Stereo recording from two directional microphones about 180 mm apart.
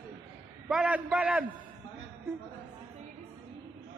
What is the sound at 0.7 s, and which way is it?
Speech, 5° right (ahead or behind).